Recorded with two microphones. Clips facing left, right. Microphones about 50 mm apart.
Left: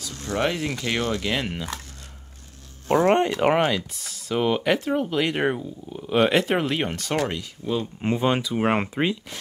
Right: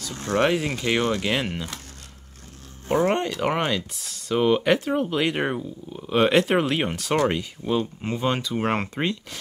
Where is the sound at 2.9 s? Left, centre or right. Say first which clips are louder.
Left 3 dB; left.